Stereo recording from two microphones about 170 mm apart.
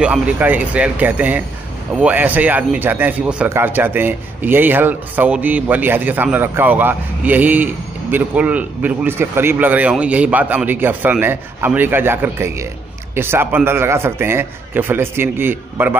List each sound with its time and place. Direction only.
0.0 s speech: 10° right (ahead or behind)